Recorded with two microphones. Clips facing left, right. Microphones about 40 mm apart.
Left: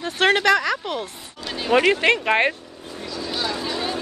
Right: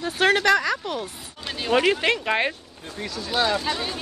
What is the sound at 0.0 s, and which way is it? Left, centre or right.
Speech, centre.